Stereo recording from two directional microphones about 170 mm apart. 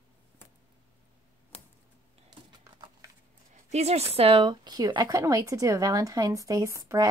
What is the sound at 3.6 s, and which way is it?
A woman's voice, 40° right (ahead or behind).